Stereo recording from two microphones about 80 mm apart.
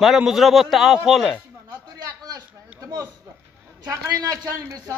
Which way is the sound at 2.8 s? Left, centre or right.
Right.